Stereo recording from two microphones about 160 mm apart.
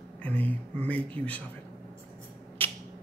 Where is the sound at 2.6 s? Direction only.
15° left (ahead or behind).